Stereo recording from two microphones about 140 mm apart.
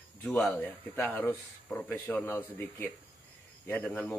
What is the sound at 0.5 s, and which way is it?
Speech, 15° left (ahead or behind).